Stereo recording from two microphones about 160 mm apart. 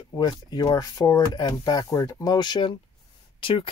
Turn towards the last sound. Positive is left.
turn(degrees=30)  # may be behind; listen again after turning